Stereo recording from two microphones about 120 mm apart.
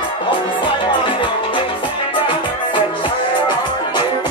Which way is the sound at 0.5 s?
40° left (ahead or behind).